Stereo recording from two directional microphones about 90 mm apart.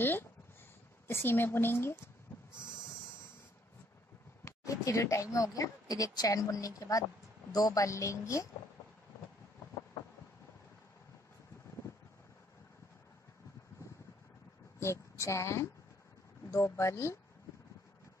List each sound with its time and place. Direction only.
0.0 s a woman's voice: 25° left (ahead or behind)
4.5 s a woman's voice: 35° left (ahead or behind)
9.9 s vehicle: 40° left (ahead or behind)
14.8 s a woman's voice: 30° left (ahead or behind)